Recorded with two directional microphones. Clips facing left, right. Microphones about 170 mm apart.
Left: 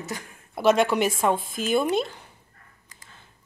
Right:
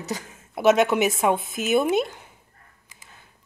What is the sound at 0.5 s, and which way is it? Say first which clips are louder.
A woman's voice: right 2 dB; 5° right (ahead or behind).